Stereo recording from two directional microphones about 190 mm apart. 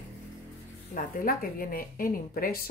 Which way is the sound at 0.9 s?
50° left (ahead or behind).